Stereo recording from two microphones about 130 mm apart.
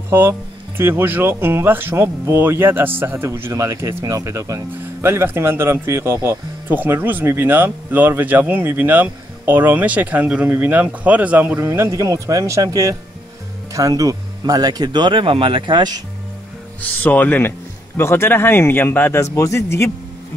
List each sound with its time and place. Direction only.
0.1 s speech: 20° right (ahead or behind); by 16.0 s 35° right (ahead or behind)
17.0 s a man's voice: 15° left (ahead or behind)